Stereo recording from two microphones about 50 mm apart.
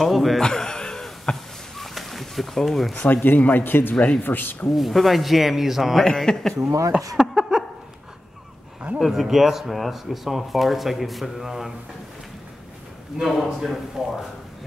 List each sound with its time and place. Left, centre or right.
0.0 s speech: centre
0.4 s a sound: centre
3.1 s a man's voice: left
4.7 s speech: centre
6.0 s speech: centre
6.6 s speech: right
7.3 s a sound: centre
8.9 s speech: centre
13.2 s a man's voice: centre